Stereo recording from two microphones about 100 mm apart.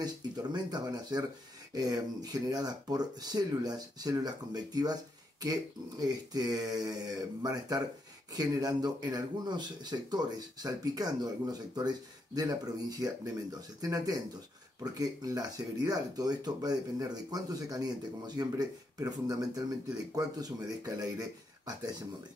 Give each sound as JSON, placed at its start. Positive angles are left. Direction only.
{"t": 0.0, "sound": "speech", "side_deg": -45}
{"t": 13.0, "sound": "speech", "side_deg": -40}